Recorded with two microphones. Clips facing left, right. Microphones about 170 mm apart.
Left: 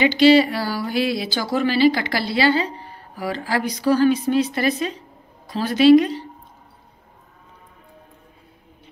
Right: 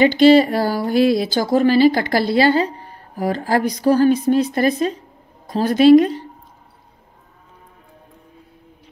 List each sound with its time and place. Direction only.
0.0 s speech: 50° right (ahead or behind)